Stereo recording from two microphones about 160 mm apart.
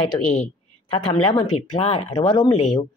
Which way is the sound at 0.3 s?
40° left (ahead or behind).